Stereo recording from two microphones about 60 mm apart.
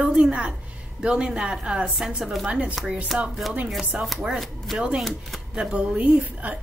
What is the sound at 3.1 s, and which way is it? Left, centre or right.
Speech, centre.